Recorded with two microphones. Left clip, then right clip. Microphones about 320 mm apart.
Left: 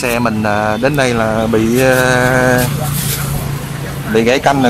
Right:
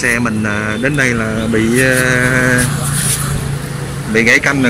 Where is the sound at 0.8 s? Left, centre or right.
Left.